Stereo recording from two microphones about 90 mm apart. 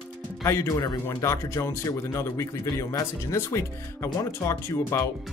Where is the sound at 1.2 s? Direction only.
35° left (ahead or behind).